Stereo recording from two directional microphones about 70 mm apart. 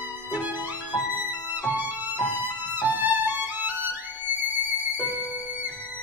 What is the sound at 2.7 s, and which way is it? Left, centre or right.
Violin, right.